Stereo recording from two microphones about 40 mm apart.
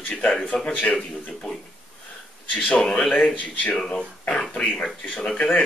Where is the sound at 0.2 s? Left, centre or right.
Left.